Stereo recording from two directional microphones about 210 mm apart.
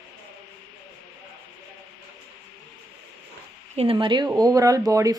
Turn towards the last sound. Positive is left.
turn(degrees=-15)  # may be behind; listen again after turning